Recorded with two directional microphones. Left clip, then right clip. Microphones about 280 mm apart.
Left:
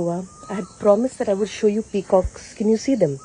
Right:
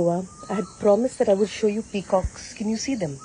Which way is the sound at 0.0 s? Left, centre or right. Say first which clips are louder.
Right 2 dB; centre.